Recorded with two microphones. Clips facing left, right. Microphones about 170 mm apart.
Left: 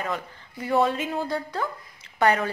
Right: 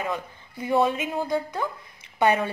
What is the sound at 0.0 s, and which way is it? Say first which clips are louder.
A woman's voice: right 1 dB; 15° right (ahead or behind).